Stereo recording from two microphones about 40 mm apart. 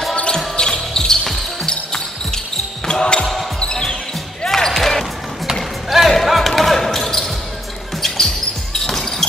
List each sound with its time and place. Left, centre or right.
0.1 s basketball bounce: left
0.6 s basketball bounce: centre
4.5 s basketball bounce: centre
5.6 s basketball bounce: centre
8.7 s basketball bounce: centre